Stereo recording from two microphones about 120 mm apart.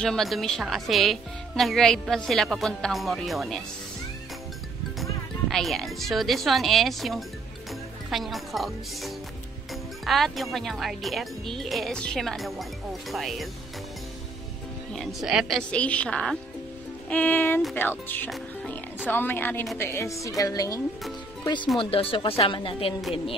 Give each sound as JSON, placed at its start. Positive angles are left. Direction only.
{"t": 0.0, "sound": "a woman's voice", "side_deg": 5}
{"t": 5.5, "sound": "a woman's voice", "side_deg": 0}
{"t": 14.9, "sound": "a woman's voice", "side_deg": 0}
{"t": 22.1, "sound": "a woman's voice", "side_deg": 50}